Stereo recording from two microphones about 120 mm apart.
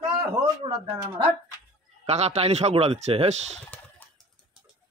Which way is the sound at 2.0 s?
65° right (ahead or behind).